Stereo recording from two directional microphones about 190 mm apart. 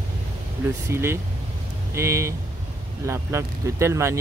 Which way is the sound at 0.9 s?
15° right (ahead or behind).